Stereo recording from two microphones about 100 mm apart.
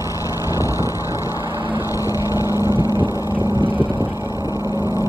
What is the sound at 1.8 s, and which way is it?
Vehicle, 35° left (ahead or behind).